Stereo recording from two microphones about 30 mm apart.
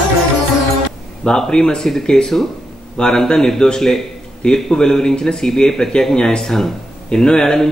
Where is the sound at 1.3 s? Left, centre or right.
Left.